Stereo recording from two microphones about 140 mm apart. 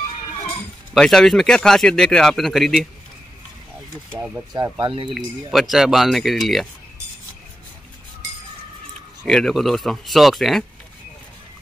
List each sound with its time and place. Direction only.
0.9 s speech: 5° left (ahead or behind)
4.7 s speech: 35° right (ahead or behind)
5.1 s speech: centre (ahead or behind)
9.2 s speech: 5° left (ahead or behind)